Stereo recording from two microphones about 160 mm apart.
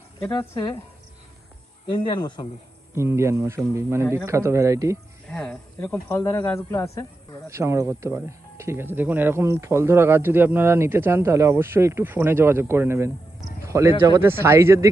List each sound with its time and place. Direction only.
0.2 s speech: 20° left (ahead or behind)
1.9 s speech: 30° left (ahead or behind)
2.9 s speech: 15° right (ahead or behind)
5.3 s speech: 5° left (ahead or behind)
7.4 s speech: 20° right (ahead or behind)